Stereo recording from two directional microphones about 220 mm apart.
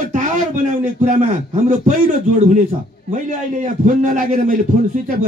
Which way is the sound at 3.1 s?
35° right (ahead or behind).